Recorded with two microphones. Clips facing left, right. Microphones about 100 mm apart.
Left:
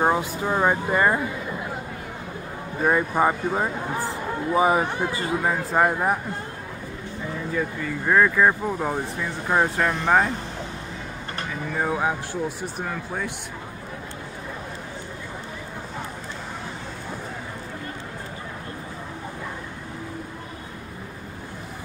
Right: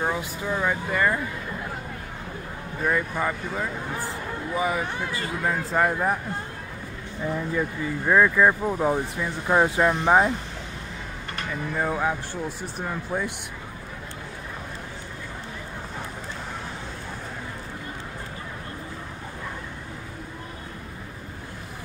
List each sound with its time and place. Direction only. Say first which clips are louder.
0.2 s speech: left 4 dB; 35° left (ahead or behind)
2.8 s speech: left 5 dB; 25° left (ahead or behind)
7.5 s speech: even; 5° right (ahead or behind)
11.7 s speech: left 1 dB; 10° left (ahead or behind)